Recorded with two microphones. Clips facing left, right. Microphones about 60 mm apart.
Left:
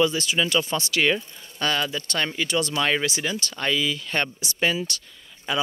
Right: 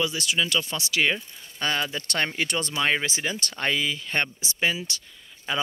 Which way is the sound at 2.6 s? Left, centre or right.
Right.